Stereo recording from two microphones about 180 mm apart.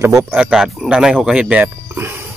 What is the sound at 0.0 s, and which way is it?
Speech, 15° right (ahead or behind).